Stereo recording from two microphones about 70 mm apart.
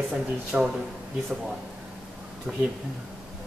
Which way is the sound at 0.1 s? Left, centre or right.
Centre.